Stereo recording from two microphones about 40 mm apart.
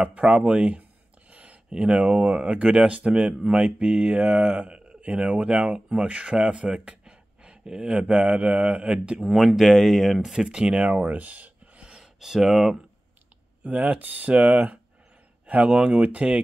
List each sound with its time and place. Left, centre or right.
0.0 s speech: right
1.3 s a sound: right
1.7 s speech: right
9.3 s speech: centre
10.3 s speech: right
12.0 s speech: centre
13.7 s speech: right
13.9 s speech: right
15.4 s speech: right